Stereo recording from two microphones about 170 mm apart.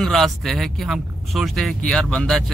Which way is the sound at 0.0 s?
Centre (ahead or behind).